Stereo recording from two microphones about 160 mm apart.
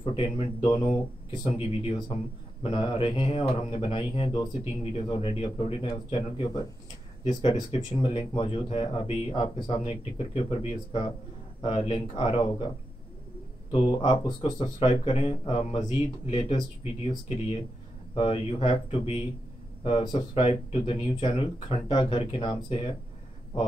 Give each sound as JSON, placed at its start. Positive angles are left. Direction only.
{"t": 0.0, "sound": "a man's voice", "side_deg": 35}
{"t": 18.1, "sound": "speech", "side_deg": 35}